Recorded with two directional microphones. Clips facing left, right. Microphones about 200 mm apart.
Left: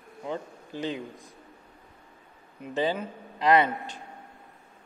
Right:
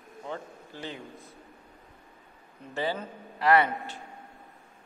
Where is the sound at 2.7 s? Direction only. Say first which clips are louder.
Left 4 dB; 15° left (ahead or behind).